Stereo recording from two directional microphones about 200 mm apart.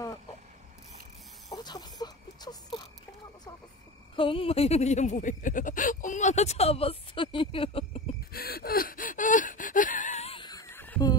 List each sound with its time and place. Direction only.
1.5 s a sound: 20° left (ahead or behind)
4.2 s speech: 25° left (ahead or behind)
8.3 s gasp: 50° left (ahead or behind); by 11.1 s 15° left (ahead or behind)